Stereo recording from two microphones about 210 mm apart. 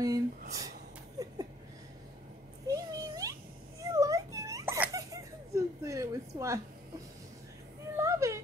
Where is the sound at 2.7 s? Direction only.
15° right (ahead or behind).